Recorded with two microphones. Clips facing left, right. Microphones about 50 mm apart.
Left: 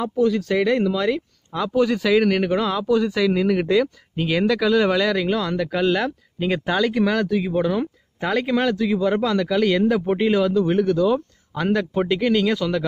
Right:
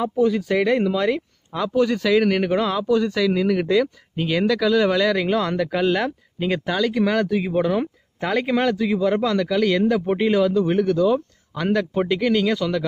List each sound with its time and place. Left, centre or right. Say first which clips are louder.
0.0 s speech: even; centre
1.7 s a man's voice: even; centre
5.1 s speech: right 1 dB; centre
6.6 s speech: left 2 dB; left
7.1 s a man's voice: even; centre